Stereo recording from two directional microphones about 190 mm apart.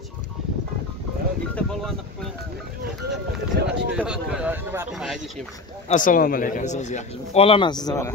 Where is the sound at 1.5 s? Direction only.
Centre (ahead or behind).